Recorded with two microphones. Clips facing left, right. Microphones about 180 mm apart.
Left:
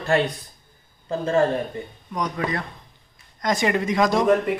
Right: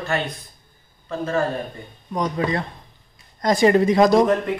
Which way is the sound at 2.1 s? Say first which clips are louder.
Right 3 dB; 25° right (ahead or behind).